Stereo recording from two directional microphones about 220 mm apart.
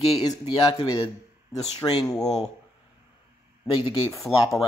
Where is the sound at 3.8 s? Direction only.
20° left (ahead or behind).